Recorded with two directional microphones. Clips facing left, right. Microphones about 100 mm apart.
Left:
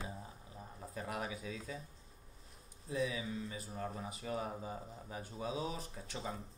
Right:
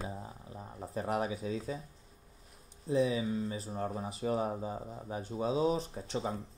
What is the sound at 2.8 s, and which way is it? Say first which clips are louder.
Speech: right 8 dB; 30° right (ahead or behind).